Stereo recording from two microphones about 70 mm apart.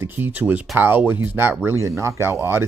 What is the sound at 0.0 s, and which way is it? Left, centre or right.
Speech, right.